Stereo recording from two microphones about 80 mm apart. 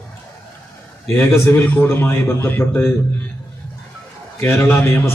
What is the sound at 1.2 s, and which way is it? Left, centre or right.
A man's voice, left.